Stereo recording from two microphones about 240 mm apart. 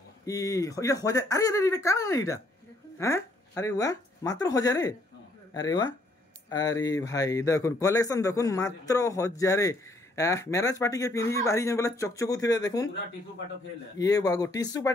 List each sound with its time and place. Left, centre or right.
0.2 s speech: centre
13.9 s speech: centre